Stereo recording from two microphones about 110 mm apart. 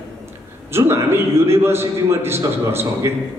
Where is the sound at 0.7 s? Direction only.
20° right (ahead or behind).